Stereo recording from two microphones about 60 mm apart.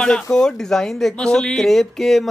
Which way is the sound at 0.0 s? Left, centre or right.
Centre.